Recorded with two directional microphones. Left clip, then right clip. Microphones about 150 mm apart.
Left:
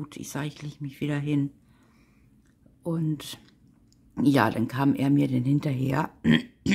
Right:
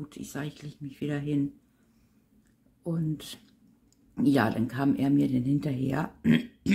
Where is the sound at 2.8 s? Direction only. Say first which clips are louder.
Left 4 dB; 30° left (ahead or behind).